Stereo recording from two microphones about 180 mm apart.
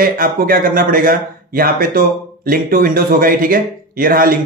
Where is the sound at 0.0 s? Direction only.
50° right (ahead or behind).